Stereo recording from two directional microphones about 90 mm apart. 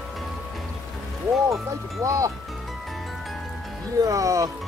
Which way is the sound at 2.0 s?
35° right (ahead or behind).